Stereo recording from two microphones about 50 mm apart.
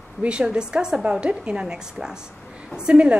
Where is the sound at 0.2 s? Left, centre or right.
Centre.